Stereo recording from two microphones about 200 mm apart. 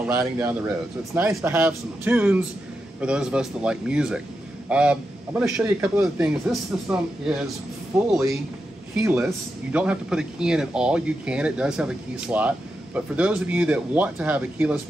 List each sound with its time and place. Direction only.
0.0 s a man's voice: 15° right (ahead or behind)